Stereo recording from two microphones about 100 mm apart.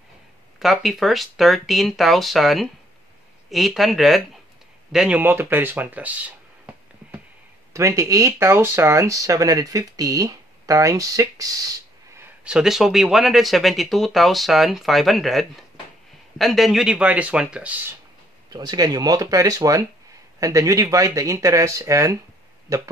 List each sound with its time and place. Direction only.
0.6 s speech: centre (ahead or behind)
5.2 s speech: 20° right (ahead or behind)
7.7 s speech: 30° right (ahead or behind)
12.4 s speech: 5° right (ahead or behind)
18.5 s speech: 40° right (ahead or behind)